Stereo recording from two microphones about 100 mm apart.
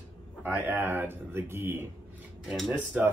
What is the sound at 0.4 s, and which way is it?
Speech, 20° right (ahead or behind).